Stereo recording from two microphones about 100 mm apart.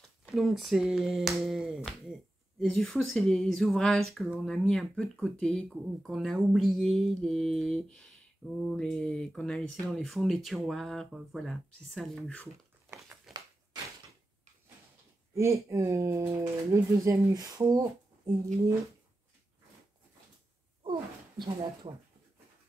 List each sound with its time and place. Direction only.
0.2 s speech: centre (ahead or behind)
13.3 s a sound: centre (ahead or behind)
15.3 s speech: 30° right (ahead or behind)
21.5 s speech: 70° right (ahead or behind)